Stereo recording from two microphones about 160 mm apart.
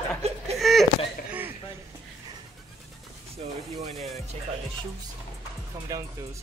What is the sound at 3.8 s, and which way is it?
Speech, 40° right (ahead or behind).